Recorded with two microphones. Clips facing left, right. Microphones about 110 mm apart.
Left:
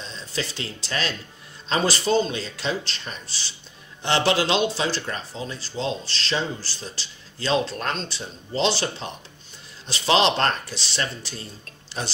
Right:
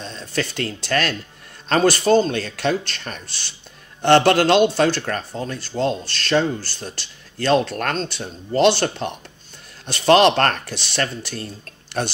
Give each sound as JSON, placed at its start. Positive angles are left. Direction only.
{"t": 0.0, "sound": "speech", "side_deg": -55}